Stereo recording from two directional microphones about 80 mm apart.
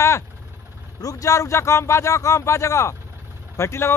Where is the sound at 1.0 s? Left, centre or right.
Left.